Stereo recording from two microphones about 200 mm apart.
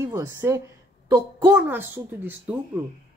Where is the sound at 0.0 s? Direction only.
15° right (ahead or behind).